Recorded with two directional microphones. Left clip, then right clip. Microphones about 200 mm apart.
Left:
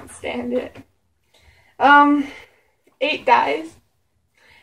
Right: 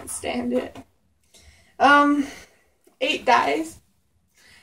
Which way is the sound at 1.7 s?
5° right (ahead or behind).